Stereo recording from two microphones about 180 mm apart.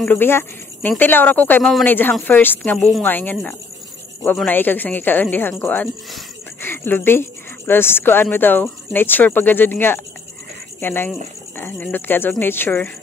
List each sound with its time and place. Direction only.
0.0 s speech: 10° left (ahead or behind)